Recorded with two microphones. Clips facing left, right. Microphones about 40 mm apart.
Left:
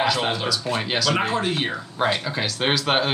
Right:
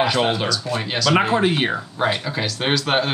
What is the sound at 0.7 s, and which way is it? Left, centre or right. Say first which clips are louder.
Speech: right 2 dB; centre.